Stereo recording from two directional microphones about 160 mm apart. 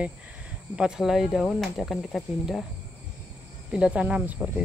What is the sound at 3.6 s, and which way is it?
Speech, 5° right (ahead or behind).